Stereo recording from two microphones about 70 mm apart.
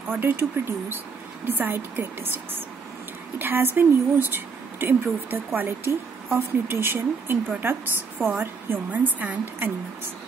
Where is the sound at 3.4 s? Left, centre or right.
Right.